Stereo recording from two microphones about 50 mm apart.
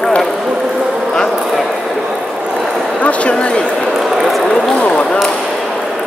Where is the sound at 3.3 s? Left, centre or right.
Centre.